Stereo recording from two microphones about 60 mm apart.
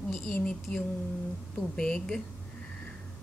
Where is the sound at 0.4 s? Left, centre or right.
Centre.